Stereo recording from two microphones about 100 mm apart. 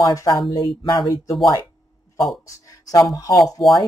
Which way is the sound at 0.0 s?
40° left (ahead or behind).